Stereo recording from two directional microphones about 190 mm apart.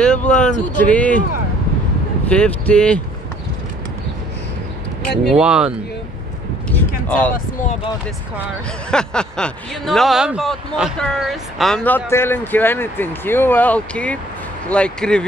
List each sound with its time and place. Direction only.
0.0 s speech: 5° left (ahead or behind)
2.2 s speech: 5° left (ahead or behind)
5.3 s speech: 5° right (ahead or behind)
7.1 s speech: 10° left (ahead or behind)
8.9 s speech: 5° left (ahead or behind)